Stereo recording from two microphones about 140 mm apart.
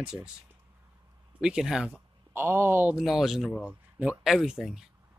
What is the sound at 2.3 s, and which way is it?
Speech, 15° right (ahead or behind).